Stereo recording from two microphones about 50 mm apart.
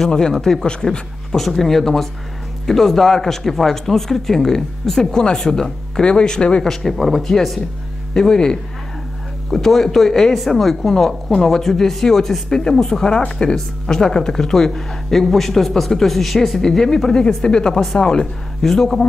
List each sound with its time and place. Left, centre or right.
0.3 s speech: centre
6.7 s speech: centre
18.6 s speech: centre